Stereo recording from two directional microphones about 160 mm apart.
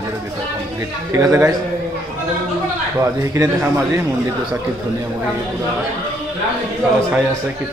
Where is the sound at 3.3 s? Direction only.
15° right (ahead or behind).